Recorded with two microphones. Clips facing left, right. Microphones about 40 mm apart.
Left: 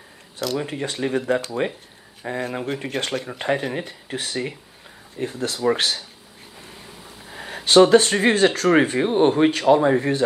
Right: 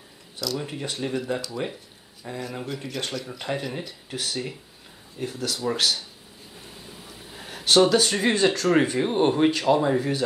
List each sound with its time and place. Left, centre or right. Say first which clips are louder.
0.4 s speech: left 5 dB; left
7.2 s speech: left 1 dB; left